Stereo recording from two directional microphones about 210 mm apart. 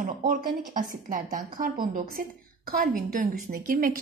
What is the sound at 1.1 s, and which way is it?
A woman's voice, 40° right (ahead or behind).